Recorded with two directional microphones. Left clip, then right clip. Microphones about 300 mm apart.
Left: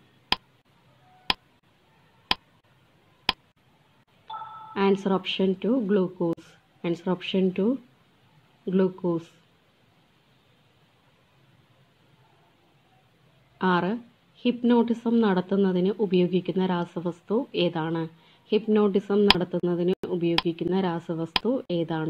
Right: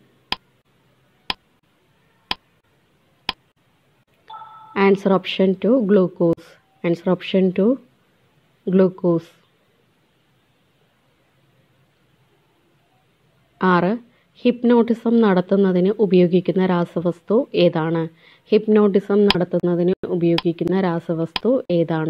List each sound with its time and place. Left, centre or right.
0.3 s a sound: centre
4.7 s a woman's voice: centre
13.6 s a woman's voice: centre